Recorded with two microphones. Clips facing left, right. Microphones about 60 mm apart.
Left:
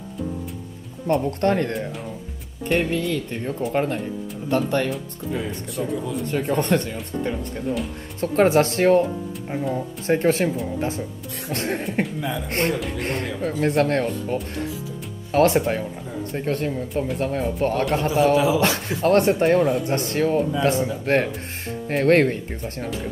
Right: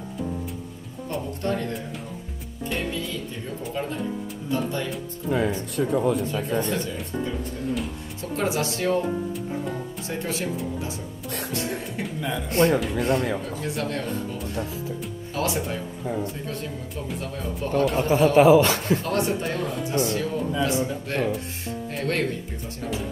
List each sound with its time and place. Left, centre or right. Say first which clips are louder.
1.0 s speech: left 8 dB; left
5.3 s speech: right 4 dB; right
6.2 s speech: left 3 dB; left
8.2 s speech: left 9 dB; left
10.0 s speech: left 11 dB; left
11.5 s speech: left 5 dB; left
11.8 s speech: left 7 dB; left
12.2 s speech: left 2 dB; centre
12.4 s speech: right 5 dB; left
18.0 s a man's voice: right 3 dB; right
18.9 s speech: left 8 dB; left